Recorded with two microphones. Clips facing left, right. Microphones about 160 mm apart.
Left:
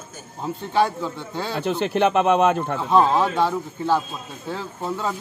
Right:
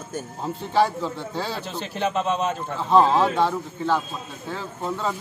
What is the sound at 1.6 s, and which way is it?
Speech, 60° left (ahead or behind).